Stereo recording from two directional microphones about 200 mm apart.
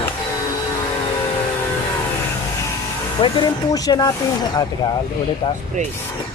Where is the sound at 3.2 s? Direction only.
25° left (ahead or behind).